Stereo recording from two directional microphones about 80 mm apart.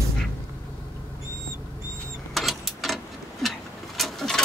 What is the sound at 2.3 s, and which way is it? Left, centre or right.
Vehicle, centre.